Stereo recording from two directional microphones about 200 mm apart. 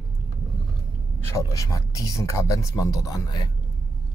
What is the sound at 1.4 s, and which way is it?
Speech, 15° left (ahead or behind).